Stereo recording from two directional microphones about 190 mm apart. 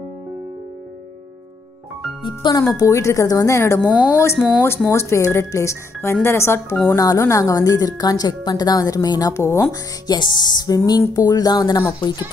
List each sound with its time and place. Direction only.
2.2 s speech: 20° left (ahead or behind)